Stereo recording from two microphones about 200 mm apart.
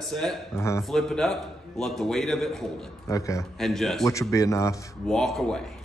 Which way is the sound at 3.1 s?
15° left (ahead or behind).